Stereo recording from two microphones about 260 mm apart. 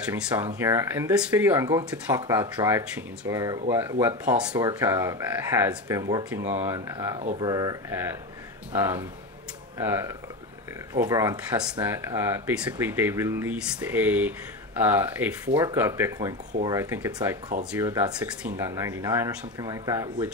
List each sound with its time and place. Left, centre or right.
0.1 s speech: centre
7.2 s speech: centre